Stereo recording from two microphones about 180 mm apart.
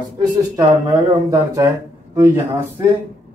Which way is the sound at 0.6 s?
20° right (ahead or behind).